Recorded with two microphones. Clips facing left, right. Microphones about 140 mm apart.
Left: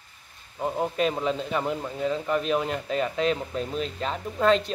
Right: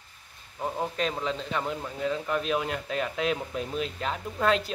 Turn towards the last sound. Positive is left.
turn(degrees=0)  # may be behind; listen again after turning